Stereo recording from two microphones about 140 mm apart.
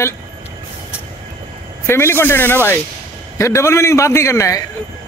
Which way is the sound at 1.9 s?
15° left (ahead or behind).